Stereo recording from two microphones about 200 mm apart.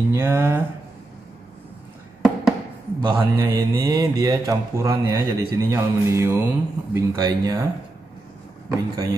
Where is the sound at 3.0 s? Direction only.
20° right (ahead or behind).